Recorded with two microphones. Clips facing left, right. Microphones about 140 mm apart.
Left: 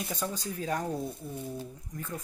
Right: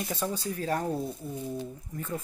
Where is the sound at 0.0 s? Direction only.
5° right (ahead or behind).